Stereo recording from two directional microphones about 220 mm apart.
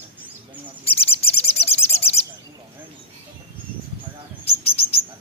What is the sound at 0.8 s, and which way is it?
Bird, 25° left (ahead or behind).